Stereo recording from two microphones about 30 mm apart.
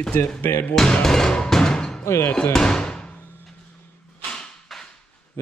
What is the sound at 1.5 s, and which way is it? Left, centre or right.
Music, left.